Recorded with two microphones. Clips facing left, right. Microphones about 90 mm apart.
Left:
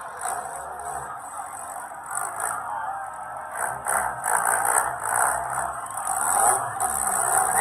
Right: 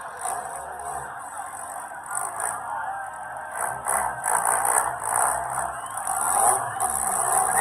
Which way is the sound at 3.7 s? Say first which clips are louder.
Even; centre (ahead or behind).